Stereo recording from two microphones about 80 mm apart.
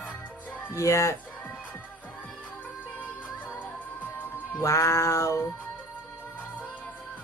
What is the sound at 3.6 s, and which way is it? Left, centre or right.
Music, left.